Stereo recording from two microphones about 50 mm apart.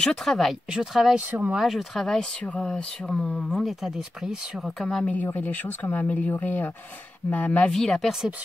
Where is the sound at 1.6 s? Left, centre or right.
Centre.